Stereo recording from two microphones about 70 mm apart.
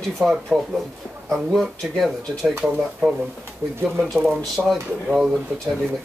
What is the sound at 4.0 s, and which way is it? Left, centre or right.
Speech, centre.